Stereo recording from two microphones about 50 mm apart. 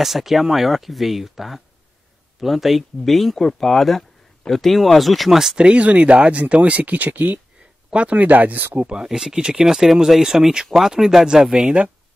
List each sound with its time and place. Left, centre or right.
0.0 s speech: centre
5.6 s speech: right
7.9 s speech: right
8.8 s speech: centre